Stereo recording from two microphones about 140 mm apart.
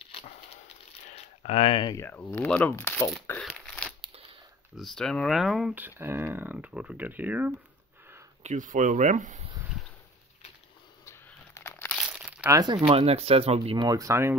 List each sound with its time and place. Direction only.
1.1 s a sound: 50° left (ahead or behind)
1.9 s speech: 20° left (ahead or behind)
3.3 s crumpling: 5° left (ahead or behind)
4.7 s speech: centre (ahead or behind)
8.4 s speech: 60° right (ahead or behind)
11.1 s crushing: 20° left (ahead or behind)
12.1 s crumpling: 5° right (ahead or behind)
12.4 s speech: 25° right (ahead or behind)
12.8 s speech: 45° right (ahead or behind)
13.7 s speech: 25° right (ahead or behind)